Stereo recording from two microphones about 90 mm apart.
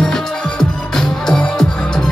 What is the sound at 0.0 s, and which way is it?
Music, 5° left (ahead or behind).